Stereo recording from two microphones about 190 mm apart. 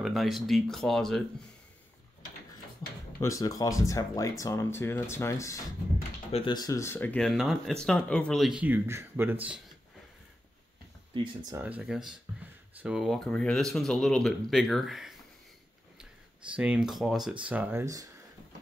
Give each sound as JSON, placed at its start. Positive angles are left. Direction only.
{"t": 0.0, "sound": "speech", "side_deg": 0}
{"t": 3.2, "sound": "speech", "side_deg": 15}
{"t": 11.5, "sound": "speech", "side_deg": -5}
{"t": 16.5, "sound": "speech", "side_deg": -5}